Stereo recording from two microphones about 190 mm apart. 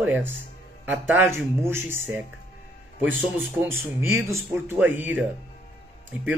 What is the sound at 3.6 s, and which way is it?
Speech, 15° right (ahead or behind).